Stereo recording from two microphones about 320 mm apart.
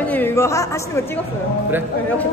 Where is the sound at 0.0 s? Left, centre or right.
Centre.